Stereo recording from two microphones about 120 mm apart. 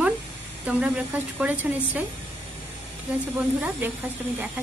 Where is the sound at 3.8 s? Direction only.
15° right (ahead or behind).